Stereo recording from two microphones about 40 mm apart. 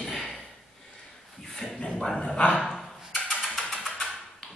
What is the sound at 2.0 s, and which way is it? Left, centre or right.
Speech, centre.